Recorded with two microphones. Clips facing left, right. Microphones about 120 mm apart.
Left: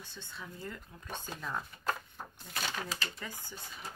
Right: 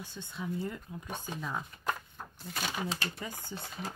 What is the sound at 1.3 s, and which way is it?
Speech, 5° right (ahead or behind).